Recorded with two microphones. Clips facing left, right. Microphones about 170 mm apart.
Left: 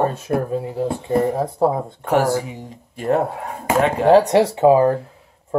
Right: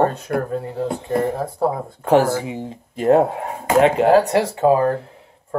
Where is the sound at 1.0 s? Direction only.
15° left (ahead or behind).